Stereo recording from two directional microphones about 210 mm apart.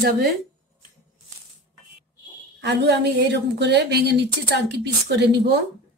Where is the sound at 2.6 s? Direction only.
55° right (ahead or behind).